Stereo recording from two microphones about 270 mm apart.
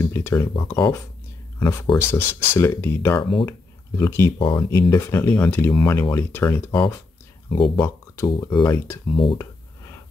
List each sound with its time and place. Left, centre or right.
0.0 s speech: centre
7.8 s speech: centre